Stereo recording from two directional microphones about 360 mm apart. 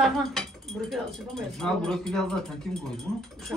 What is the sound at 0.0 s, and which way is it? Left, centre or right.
Speech, centre.